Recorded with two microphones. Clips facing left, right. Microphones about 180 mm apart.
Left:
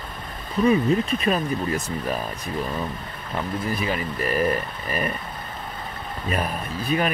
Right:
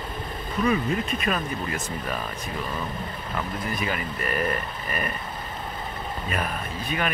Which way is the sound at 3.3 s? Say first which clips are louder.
Left 4 dB; 30° left (ahead or behind).